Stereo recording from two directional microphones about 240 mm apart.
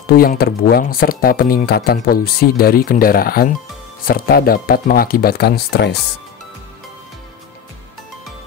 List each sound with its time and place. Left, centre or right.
0.0 s speech: left